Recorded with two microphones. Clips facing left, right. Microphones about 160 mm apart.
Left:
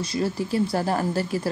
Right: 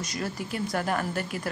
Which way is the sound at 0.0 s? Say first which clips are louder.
Left 7 dB; 30° left (ahead or behind).